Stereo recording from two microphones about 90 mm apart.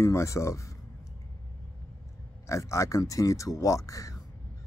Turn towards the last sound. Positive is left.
turn(degrees=40)  # may be behind; listen again after turning